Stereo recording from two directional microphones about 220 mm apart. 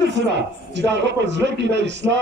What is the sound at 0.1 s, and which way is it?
A man's voice, 50° right (ahead or behind).